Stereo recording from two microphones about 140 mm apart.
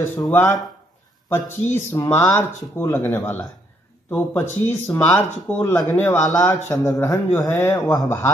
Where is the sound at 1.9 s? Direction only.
20° left (ahead or behind).